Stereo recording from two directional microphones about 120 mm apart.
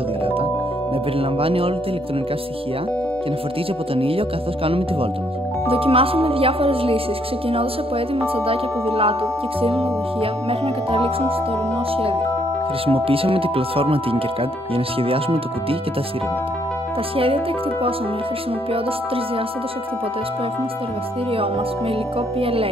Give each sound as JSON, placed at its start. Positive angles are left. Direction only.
{"t": 1.4, "sound": "speech", "side_deg": -50}
{"t": 3.9, "sound": "speech", "side_deg": -50}
{"t": 8.2, "sound": "speech", "side_deg": -50}
{"t": 12.8, "sound": "speech", "side_deg": -50}
{"t": 22.4, "sound": "speech", "side_deg": -50}